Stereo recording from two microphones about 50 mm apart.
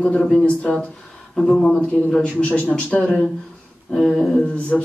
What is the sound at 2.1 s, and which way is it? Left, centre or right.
Speech, left.